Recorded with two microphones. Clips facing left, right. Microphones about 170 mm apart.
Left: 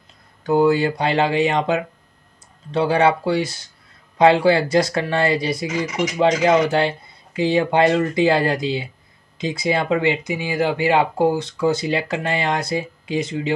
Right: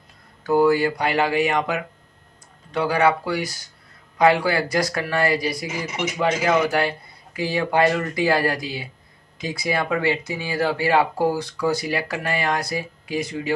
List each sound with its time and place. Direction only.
0.4 s speech: 25° left (ahead or behind)